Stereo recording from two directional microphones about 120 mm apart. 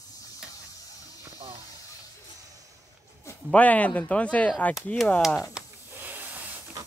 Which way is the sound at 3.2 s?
15° left (ahead or behind).